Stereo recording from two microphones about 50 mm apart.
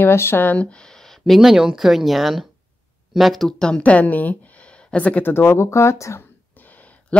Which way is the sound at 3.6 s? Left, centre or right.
Centre.